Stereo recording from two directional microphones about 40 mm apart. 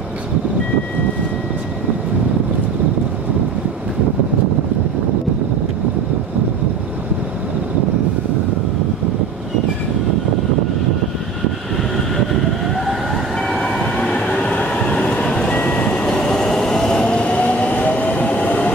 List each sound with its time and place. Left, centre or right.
12.7 s vehicle: centre
14.4 s train: left
15.5 s train: left